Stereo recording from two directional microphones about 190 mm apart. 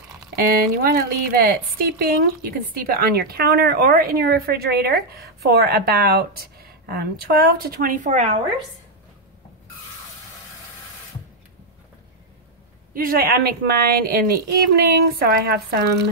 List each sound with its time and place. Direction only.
0.4 s a woman's voice: 50° right (ahead or behind)
12.9 s a woman's voice: 50° right (ahead or behind)